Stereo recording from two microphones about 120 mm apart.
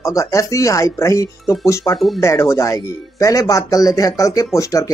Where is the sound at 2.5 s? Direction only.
25° left (ahead or behind).